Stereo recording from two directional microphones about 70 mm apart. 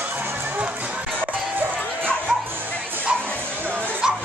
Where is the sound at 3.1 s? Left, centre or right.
Centre.